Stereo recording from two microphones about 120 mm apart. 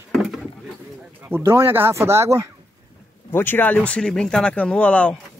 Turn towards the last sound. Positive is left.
turn(degrees=10)  # may be behind; listen again after turning